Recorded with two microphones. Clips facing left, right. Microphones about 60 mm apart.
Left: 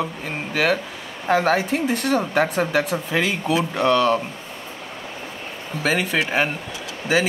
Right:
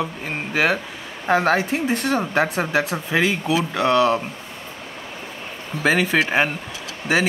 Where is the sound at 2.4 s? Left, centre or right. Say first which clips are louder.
Even; centre.